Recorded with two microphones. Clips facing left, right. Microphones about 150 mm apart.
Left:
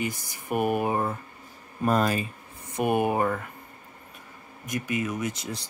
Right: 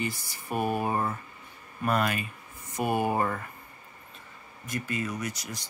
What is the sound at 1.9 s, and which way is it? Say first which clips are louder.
Speech: left 4 dB; 35° left (ahead or behind).